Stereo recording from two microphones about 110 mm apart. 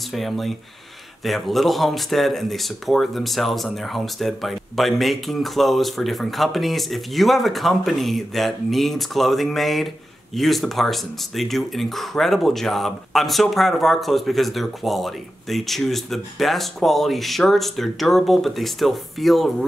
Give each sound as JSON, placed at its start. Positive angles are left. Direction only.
{"t": 0.1, "sound": "speech", "side_deg": 0}